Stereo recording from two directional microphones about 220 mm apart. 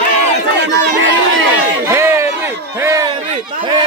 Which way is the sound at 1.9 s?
10° right (ahead or behind).